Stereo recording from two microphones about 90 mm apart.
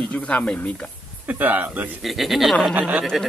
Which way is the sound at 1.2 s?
20° right (ahead or behind).